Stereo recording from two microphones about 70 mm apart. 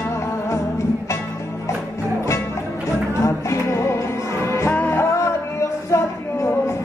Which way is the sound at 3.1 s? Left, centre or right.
Left.